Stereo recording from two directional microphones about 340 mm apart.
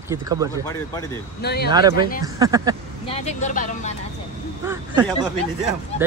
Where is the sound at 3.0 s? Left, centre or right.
Centre.